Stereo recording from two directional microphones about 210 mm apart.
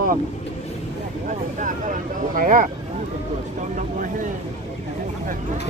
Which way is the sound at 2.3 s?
40° right (ahead or behind).